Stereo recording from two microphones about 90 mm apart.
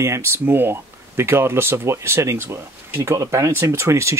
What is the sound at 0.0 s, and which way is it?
Speech, 30° right (ahead or behind).